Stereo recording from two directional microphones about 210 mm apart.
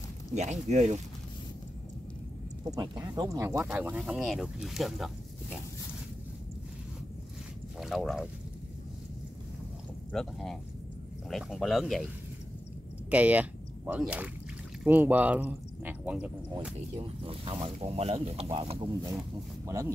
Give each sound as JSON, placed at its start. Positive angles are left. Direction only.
{"t": 0.3, "sound": "speech", "side_deg": -35}
{"t": 2.7, "sound": "speech", "side_deg": -20}
{"t": 7.8, "sound": "speech", "side_deg": 0}
{"t": 10.1, "sound": "speech", "side_deg": 0}
{"t": 13.1, "sound": "speech", "side_deg": -5}
{"t": 17.0, "sound": "speech", "side_deg": -25}
{"t": 19.6, "sound": "speech", "side_deg": -15}